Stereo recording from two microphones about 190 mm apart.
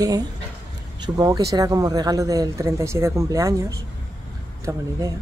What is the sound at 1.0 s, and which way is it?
Speech, 20° right (ahead or behind).